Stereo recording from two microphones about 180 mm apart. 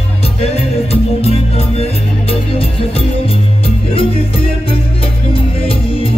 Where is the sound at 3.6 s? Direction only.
30° left (ahead or behind).